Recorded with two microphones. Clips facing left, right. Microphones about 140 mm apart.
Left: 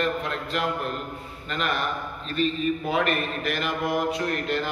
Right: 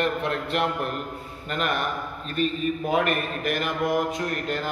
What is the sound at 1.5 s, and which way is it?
A man's voice, 50° right (ahead or behind).